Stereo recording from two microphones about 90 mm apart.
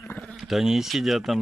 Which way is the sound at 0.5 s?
5° right (ahead or behind).